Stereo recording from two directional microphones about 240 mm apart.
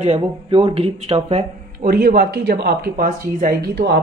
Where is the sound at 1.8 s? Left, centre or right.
Right.